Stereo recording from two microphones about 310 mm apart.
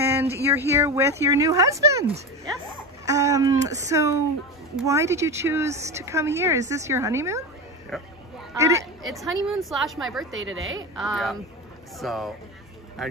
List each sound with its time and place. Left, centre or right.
0.0 s speech: centre
3.1 s a woman's voice: centre
10.3 s a woman's voice: right
11.0 s a woman's voice: centre